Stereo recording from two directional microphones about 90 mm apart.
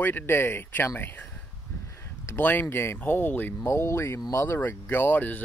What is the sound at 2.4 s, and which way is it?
Speech, 20° left (ahead or behind).